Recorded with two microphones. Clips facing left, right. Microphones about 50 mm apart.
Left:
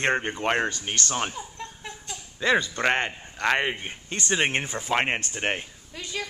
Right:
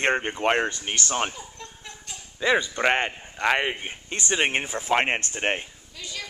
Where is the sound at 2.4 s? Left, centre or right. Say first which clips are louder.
Right 1 dB; centre.